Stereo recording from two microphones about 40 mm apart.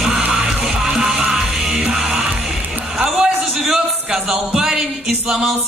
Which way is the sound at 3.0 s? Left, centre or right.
Centre.